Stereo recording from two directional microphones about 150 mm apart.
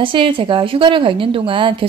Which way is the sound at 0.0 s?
35° right (ahead or behind).